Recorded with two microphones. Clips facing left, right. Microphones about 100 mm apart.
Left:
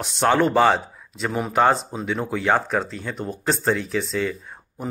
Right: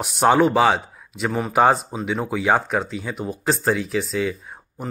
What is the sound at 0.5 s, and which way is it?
A man's voice, centre (ahead or behind).